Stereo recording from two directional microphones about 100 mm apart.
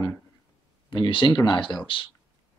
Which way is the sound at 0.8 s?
55° left (ahead or behind).